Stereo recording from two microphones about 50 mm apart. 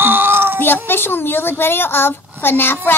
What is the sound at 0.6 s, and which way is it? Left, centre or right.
Speech, left.